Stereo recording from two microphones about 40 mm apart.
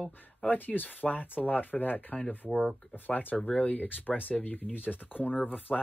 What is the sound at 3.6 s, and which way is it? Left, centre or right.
Speech, left.